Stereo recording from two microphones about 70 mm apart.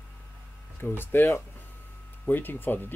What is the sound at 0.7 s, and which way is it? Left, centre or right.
Speech, left.